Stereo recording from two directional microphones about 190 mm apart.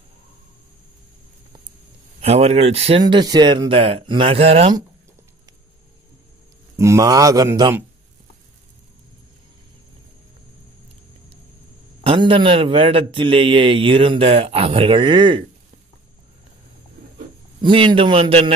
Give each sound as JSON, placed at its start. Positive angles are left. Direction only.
{"t": 2.1, "sound": "a man's voice", "side_deg": -35}
{"t": 6.8, "sound": "speech", "side_deg": -15}
{"t": 12.0, "sound": "a man's voice", "side_deg": -25}
{"t": 17.6, "sound": "a man's voice", "side_deg": -25}